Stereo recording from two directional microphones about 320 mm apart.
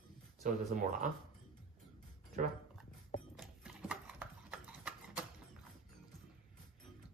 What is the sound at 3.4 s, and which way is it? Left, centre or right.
Clip-clop, centre.